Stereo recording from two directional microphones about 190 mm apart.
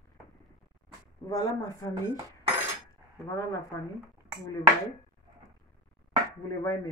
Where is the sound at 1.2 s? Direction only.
20° left (ahead or behind).